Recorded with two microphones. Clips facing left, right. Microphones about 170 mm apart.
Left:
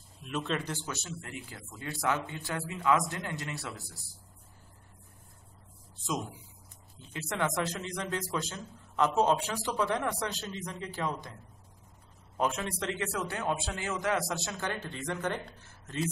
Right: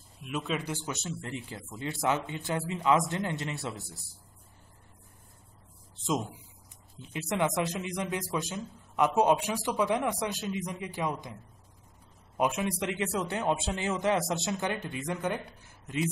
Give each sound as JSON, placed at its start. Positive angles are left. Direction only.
{"t": 0.2, "sound": "speech", "side_deg": -5}
{"t": 7.0, "sound": "a man's voice", "side_deg": -15}
{"t": 12.4, "sound": "speech", "side_deg": -15}